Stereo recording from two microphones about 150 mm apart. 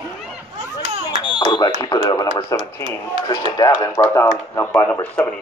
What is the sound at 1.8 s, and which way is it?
A man's voice, 25° left (ahead or behind).